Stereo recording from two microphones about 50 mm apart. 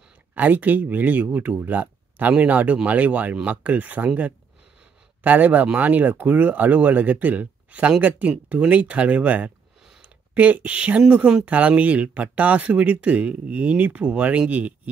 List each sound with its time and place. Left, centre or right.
0.3 s speech: right